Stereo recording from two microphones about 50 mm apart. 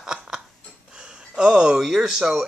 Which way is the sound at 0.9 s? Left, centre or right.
Centre.